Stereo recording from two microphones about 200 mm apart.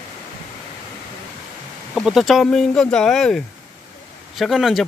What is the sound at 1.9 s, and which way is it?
Speech, centre (ahead or behind).